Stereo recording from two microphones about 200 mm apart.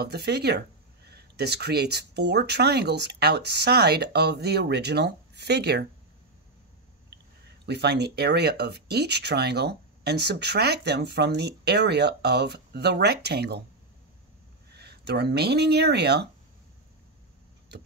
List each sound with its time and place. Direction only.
0.0 s speech: 55° right (ahead or behind)
7.6 s speech: 55° right (ahead or behind)
14.8 s speech: 55° right (ahead or behind)